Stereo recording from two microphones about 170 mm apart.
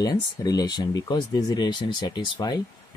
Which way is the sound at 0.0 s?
20° left (ahead or behind).